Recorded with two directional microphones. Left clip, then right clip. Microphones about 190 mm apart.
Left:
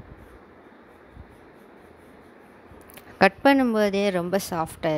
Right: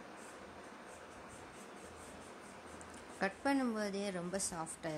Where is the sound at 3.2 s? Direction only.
45° left (ahead or behind).